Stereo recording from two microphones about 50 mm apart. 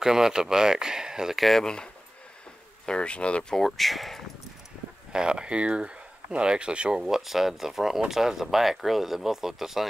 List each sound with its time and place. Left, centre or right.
0.0 s speech: centre
1.4 s speech: centre
2.9 s speech: left
3.5 s speech: centre
5.1 s speech: centre
7.0 s speech: centre